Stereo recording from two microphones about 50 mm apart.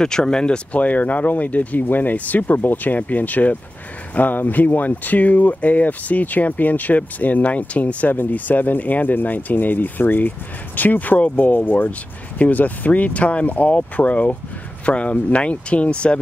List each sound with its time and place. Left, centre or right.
0.0 s speech: centre
0.7 s speech: left